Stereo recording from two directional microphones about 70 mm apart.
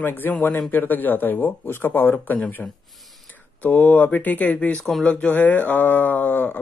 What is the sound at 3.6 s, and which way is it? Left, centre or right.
A man's voice, left.